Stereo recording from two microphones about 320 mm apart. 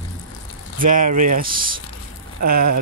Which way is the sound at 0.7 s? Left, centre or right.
Right.